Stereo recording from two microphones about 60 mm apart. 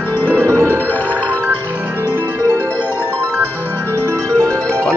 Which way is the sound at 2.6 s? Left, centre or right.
Left.